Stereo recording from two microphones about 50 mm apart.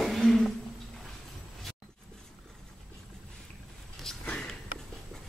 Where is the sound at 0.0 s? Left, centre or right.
Centre.